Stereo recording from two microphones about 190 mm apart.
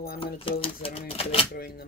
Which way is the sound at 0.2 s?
30° left (ahead or behind).